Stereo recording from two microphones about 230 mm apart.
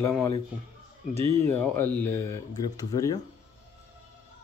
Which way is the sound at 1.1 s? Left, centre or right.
Right.